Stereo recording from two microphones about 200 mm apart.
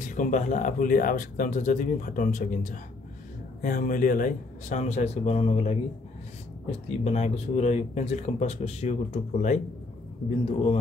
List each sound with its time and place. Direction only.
0.0 s a man's voice: 40° left (ahead or behind)